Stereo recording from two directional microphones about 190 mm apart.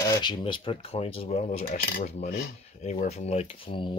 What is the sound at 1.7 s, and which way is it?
Cutlery, 50° left (ahead or behind).